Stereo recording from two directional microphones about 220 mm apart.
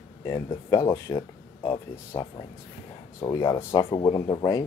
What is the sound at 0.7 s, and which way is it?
Speech, 15° left (ahead or behind).